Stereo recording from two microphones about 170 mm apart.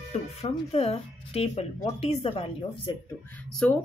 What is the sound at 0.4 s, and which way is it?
Speech, 35° left (ahead or behind).